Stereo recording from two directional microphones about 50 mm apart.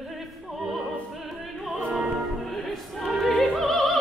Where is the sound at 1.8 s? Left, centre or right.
Right.